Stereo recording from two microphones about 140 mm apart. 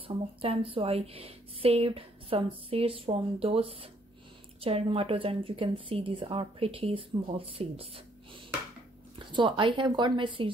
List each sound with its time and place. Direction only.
0.4 s a woman's voice: 40° right (ahead or behind)
9.3 s a woman's voice: 35° right (ahead or behind)